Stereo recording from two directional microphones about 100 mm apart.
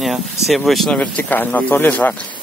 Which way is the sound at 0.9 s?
15° left (ahead or behind).